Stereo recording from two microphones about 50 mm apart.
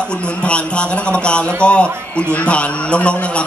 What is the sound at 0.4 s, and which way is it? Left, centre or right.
A man's voice, left.